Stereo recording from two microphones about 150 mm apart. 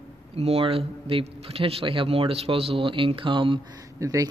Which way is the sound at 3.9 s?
20° right (ahead or behind).